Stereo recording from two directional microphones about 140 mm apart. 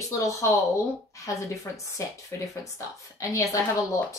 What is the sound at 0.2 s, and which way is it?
A woman's voice, 20° left (ahead or behind).